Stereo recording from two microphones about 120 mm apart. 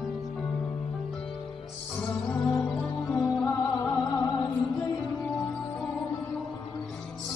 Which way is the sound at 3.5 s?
25° left (ahead or behind).